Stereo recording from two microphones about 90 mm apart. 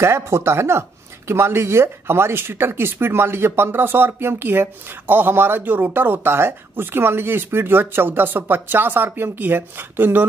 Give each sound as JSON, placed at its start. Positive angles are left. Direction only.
{"t": 0.0, "sound": "speech", "side_deg": -30}